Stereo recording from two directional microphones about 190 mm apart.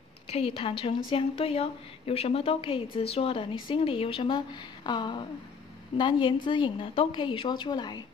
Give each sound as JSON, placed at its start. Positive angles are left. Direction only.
{"t": 0.3, "sound": "a woman's voice", "side_deg": 30}